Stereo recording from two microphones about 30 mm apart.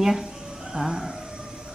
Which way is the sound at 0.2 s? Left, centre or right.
Right.